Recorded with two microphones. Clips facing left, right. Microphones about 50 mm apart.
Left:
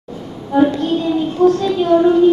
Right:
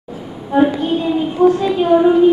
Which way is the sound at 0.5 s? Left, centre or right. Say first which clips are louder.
Even; centre.